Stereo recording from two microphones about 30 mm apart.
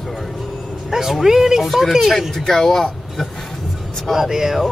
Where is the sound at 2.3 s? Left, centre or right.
Centre.